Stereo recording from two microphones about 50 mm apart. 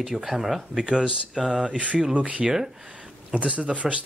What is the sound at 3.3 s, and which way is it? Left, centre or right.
Speech, right.